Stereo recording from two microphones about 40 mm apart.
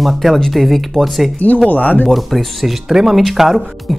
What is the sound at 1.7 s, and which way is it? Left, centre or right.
Speech, left.